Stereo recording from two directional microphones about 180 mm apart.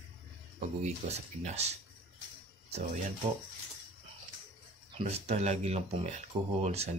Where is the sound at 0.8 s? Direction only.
40° right (ahead or behind).